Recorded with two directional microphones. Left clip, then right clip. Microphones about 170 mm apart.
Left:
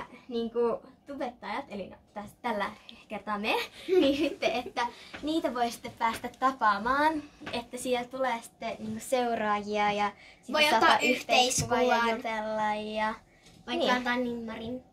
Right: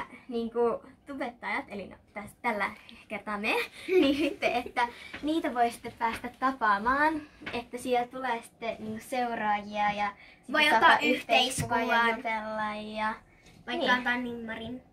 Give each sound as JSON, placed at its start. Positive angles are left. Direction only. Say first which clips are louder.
{"t": 0.3, "sound": "a woman's voice", "louder": "even", "side_deg": 20}
{"t": 5.4, "sound": "a woman's voice", "louder": "right 3 dB", "side_deg": 65}